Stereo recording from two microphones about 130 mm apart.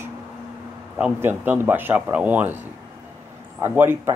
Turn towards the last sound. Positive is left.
turn(degrees=-15)  # may be behind; listen again after turning